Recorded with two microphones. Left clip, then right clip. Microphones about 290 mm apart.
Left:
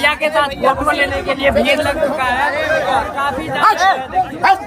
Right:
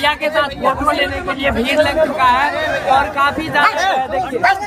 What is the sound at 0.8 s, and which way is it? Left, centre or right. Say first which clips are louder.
Speech: left 1 dB; centre.